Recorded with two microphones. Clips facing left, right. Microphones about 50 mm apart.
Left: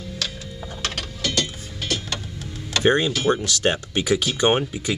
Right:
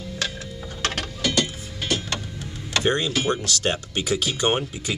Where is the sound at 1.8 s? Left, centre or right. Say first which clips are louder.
Right 1 dB; centre.